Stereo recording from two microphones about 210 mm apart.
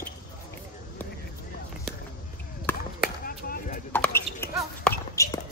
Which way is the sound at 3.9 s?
10° left (ahead or behind).